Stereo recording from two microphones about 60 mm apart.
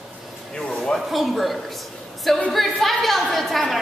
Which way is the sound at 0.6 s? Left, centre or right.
Centre.